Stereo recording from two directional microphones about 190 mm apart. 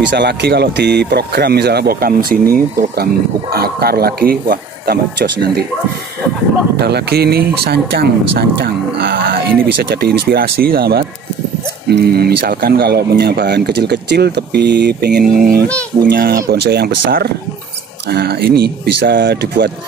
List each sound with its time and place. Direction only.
0.1 s speech: 60° right (ahead or behind)
6.8 s speech: 55° right (ahead or behind)